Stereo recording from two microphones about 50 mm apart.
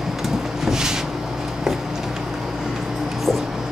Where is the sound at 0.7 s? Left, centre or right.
Centre.